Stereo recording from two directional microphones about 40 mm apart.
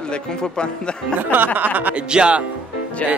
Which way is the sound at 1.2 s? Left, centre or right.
Right.